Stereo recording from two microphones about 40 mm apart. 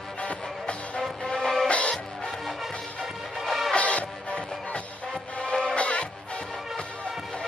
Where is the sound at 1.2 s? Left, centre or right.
Centre.